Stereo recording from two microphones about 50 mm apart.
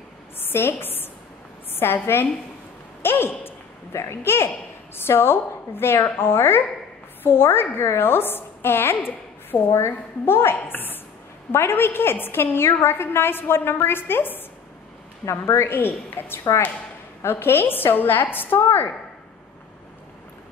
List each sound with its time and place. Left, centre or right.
0.4 s a sound: left
1.7 s a woman's voice: left
10.6 s a woman's voice: left
11.5 s a woman's voice: left
15.2 s a woman's voice: left